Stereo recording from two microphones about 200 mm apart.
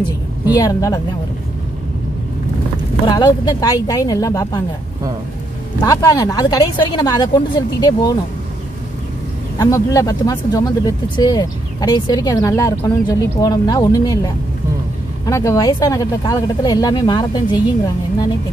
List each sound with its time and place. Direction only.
0.6 s speech: 20° left (ahead or behind)
3.1 s a woman's voice: 20° left (ahead or behind)
5.8 s a woman's voice: 20° left (ahead or behind)
9.6 s a woman's voice: 15° left (ahead or behind)